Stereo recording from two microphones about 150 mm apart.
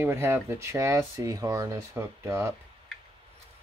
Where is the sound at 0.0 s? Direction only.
15° right (ahead or behind).